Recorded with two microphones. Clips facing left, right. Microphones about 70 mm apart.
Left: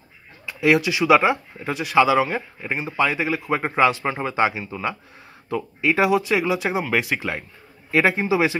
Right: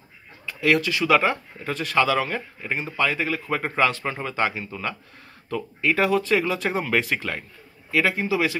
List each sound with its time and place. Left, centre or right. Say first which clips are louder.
0.5 s speech: left 3 dB; centre
7.9 s a man's voice: left 3 dB; left